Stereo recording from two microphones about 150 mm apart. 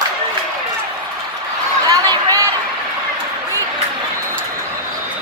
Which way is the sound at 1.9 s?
25° right (ahead or behind).